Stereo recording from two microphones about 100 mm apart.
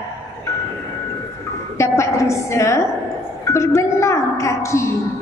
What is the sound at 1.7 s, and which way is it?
A woman's voice, 30° left (ahead or behind).